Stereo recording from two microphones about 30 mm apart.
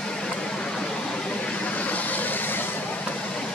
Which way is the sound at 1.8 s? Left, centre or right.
Left.